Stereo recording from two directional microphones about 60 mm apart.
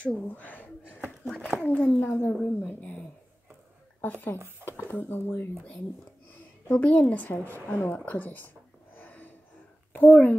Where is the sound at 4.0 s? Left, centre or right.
Left.